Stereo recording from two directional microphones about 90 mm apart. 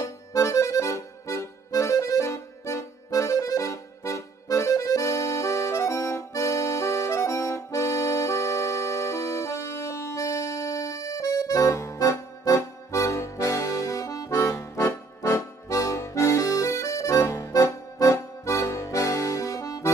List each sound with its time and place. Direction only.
0.3 s accordion: 35° left (ahead or behind)
14.4 s accordion: 30° left (ahead or behind)